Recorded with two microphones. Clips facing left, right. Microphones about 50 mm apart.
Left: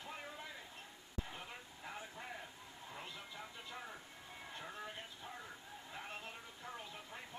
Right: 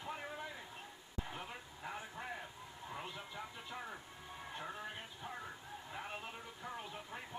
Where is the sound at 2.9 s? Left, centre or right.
Centre.